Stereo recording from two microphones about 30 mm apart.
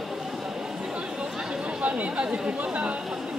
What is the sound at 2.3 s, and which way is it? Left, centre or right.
Chatter, right.